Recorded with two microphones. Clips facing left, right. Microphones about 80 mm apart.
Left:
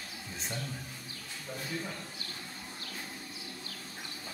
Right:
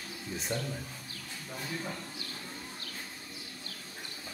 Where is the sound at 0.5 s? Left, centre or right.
Right.